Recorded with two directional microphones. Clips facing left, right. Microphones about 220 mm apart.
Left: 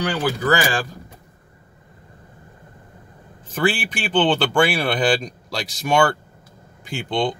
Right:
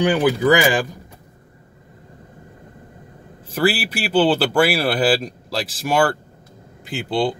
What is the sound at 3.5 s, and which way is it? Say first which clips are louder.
Speech: right 2 dB; 5° right (ahead or behind).